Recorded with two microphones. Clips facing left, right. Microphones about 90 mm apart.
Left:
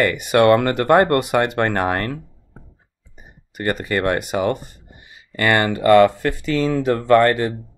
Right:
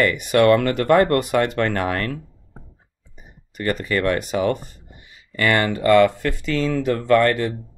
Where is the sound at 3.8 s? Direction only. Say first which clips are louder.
Even; 40° left (ahead or behind).